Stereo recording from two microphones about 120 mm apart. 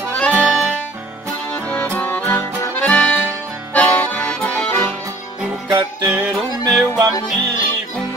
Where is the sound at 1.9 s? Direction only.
15° left (ahead or behind).